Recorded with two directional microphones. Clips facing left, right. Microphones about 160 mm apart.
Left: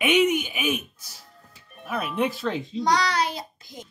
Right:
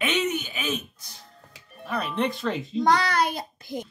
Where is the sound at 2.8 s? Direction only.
55° right (ahead or behind).